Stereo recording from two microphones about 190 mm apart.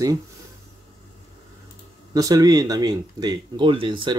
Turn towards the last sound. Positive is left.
turn(degrees=-25)  # may be behind; listen again after turning